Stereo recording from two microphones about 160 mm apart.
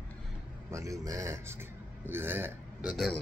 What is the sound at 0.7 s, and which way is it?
A man's voice, 20° right (ahead or behind).